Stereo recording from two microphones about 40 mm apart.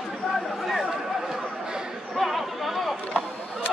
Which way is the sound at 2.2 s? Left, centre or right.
Centre.